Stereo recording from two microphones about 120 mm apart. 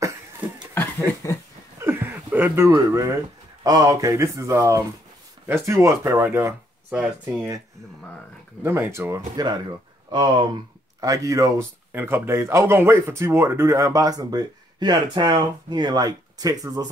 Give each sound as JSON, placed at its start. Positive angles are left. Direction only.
{"t": 0.7, "sound": "a sound", "side_deg": 20}
{"t": 1.8, "sound": "a sound", "side_deg": -20}
{"t": 3.6, "sound": "speech", "side_deg": -30}
{"t": 8.6, "sound": "speech", "side_deg": -20}
{"t": 10.1, "sound": "speech", "side_deg": -40}
{"t": 11.9, "sound": "speech", "side_deg": -20}